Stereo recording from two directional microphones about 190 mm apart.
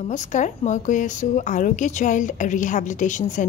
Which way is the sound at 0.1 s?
40° left (ahead or behind).